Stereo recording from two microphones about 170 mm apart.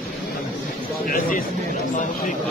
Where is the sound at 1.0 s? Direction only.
60° left (ahead or behind).